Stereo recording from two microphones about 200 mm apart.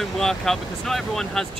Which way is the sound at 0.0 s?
Centre (ahead or behind).